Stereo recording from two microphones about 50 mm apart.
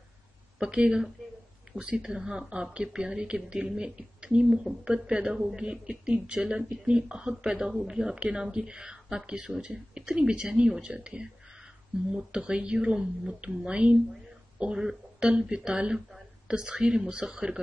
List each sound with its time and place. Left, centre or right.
0.6 s a woman's voice: centre